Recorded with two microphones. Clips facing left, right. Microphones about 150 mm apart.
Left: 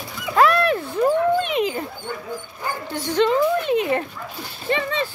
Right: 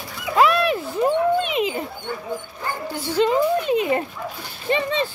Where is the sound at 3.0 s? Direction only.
10° right (ahead or behind).